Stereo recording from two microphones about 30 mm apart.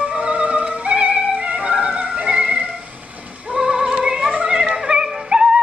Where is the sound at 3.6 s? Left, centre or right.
Right.